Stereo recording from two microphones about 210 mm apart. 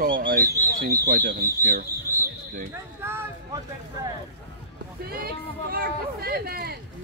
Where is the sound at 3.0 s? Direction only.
10° right (ahead or behind).